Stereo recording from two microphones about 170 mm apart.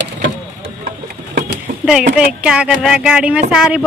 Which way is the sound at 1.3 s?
55° right (ahead or behind).